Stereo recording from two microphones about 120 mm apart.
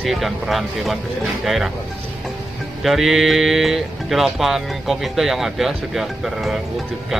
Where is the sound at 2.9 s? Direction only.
5° right (ahead or behind).